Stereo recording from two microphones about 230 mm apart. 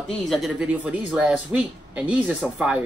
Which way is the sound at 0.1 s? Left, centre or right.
Centre.